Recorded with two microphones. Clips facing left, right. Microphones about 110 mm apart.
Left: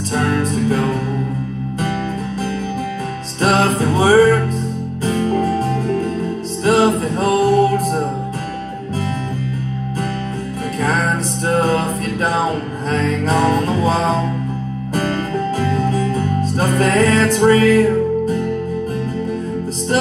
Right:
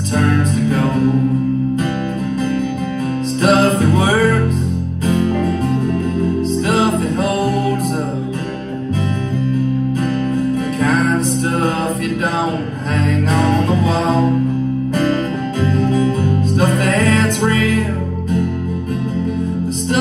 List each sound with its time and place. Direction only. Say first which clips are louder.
0.1 s music: right 2 dB; 35° left (ahead or behind)
3.4 s music: right 2 dB; 35° left (ahead or behind)
12.9 s music: even; 35° left (ahead or behind)
15.7 s music: right 2 dB; 35° left (ahead or behind)